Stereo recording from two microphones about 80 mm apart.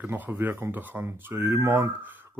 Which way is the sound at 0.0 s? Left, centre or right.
Right.